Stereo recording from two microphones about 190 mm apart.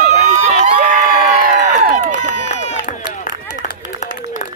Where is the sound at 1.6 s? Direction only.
40° right (ahead or behind).